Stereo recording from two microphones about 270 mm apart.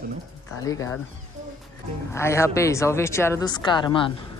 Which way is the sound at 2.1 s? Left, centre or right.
Centre.